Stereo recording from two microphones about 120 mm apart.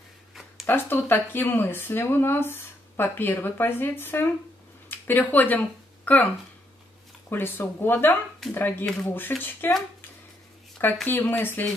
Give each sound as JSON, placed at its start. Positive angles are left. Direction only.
{"t": 0.3, "sound": "a sound", "side_deg": -5}
{"t": 0.7, "sound": "speech", "side_deg": 15}
{"t": 7.2, "sound": "speech", "side_deg": 20}
{"t": 11.1, "sound": "speech", "side_deg": 15}